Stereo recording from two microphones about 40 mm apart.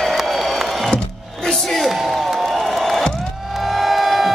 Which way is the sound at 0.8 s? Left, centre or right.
Centre.